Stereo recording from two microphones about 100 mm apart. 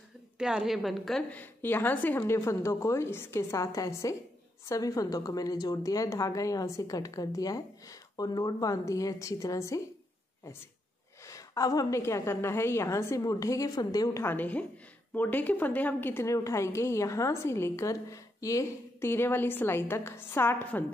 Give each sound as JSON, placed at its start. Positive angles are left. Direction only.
{"t": 0.4, "sound": "a woman's voice", "side_deg": -5}
{"t": 1.3, "sound": "a woman's voice", "side_deg": 20}
{"t": 11.2, "sound": "a sound", "side_deg": 30}
{"t": 12.0, "sound": "a woman's voice", "side_deg": 25}
{"t": 14.2, "sound": "a woman's voice", "side_deg": 15}